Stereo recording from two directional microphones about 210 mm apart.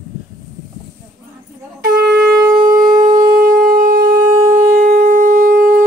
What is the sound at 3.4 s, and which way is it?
Shofar, 40° right (ahead or behind).